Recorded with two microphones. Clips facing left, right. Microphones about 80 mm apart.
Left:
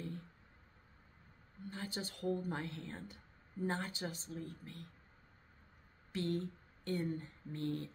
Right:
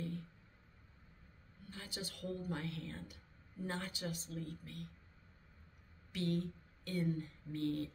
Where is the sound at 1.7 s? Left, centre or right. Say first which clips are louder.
Left 4 dB; left.